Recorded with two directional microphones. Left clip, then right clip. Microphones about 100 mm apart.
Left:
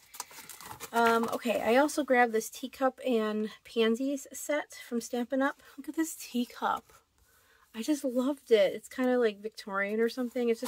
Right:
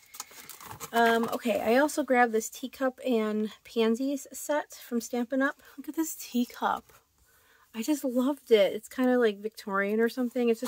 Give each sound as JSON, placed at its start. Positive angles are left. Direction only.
{"t": 0.9, "sound": "speech", "side_deg": -45}